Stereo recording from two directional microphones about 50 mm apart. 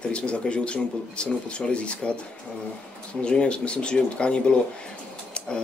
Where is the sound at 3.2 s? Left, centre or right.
Left.